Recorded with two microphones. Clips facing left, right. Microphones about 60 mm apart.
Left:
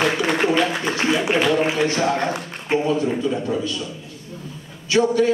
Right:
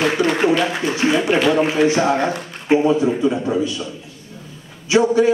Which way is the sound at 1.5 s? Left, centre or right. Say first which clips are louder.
Right 4 dB; centre.